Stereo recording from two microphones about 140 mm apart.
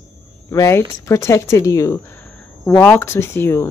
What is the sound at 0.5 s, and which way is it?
Speech, 20° left (ahead or behind).